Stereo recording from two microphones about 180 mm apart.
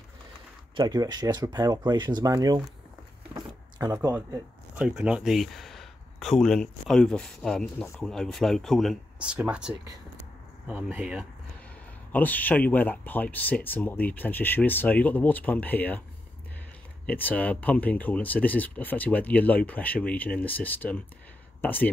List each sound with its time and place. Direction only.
0.7 s speech: 20° right (ahead or behind)
3.7 s speech: 20° right (ahead or behind)
12.1 s speech: 10° left (ahead or behind)
17.0 s speech: 10° left (ahead or behind)